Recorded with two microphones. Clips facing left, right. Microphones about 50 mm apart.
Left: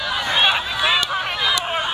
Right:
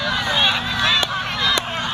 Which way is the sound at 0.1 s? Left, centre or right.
Centre.